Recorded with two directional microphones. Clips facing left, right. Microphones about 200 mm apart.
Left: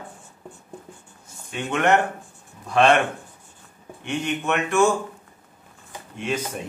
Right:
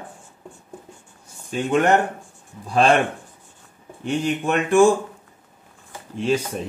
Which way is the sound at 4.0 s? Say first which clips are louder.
Right 4 dB; 30° right (ahead or behind).